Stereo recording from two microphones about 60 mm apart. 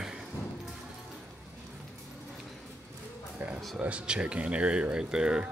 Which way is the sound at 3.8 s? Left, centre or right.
Centre.